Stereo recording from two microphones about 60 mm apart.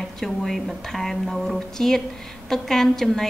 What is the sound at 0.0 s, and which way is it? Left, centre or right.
A woman's voice, centre.